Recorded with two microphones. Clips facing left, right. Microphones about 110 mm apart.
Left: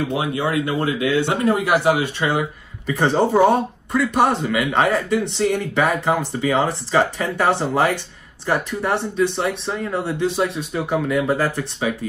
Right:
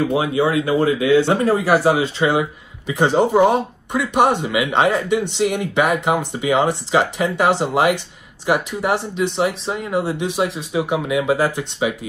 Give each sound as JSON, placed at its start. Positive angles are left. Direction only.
{"t": 0.1, "sound": "speech", "side_deg": -25}